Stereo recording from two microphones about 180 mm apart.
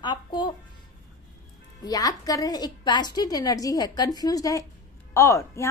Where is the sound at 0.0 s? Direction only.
25° left (ahead or behind).